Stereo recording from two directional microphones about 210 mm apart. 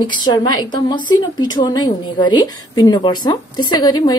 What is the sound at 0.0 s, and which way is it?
A woman's voice, 20° left (ahead or behind).